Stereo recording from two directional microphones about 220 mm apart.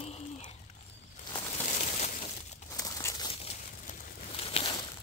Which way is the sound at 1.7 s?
30° left (ahead or behind).